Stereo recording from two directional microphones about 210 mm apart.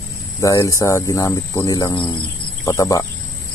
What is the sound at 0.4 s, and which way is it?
Speech, 15° left (ahead or behind).